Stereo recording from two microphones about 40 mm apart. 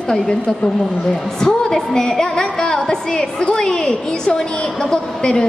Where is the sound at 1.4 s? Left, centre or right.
Centre.